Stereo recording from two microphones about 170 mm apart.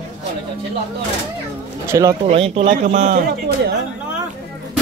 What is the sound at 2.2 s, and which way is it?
Speech, 35° right (ahead or behind).